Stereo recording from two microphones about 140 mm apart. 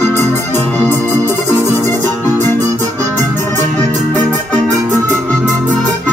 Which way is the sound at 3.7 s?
65° right (ahead or behind).